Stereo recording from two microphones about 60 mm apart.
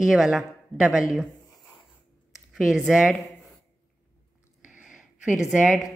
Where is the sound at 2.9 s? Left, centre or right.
Centre.